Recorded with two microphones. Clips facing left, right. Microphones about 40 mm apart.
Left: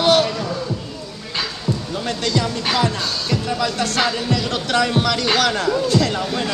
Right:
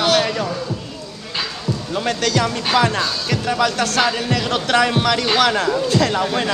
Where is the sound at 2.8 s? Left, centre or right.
Right.